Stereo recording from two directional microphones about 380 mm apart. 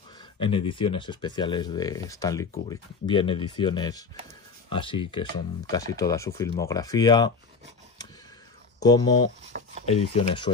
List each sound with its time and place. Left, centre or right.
0.4 s speech: centre
8.8 s speech: centre
9.5 s chopping: right
9.8 s speech: centre